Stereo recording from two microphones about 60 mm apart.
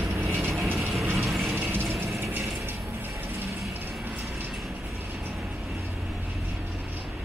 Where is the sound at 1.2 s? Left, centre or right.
Centre.